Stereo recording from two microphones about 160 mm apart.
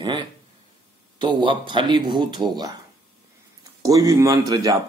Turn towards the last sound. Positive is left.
turn(degrees=-20)  # may be behind; listen again after turning